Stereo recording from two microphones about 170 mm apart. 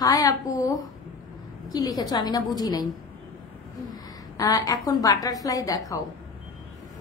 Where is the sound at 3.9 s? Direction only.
20° left (ahead or behind).